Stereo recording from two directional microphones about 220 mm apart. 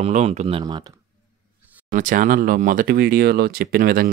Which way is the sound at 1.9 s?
35° right (ahead or behind).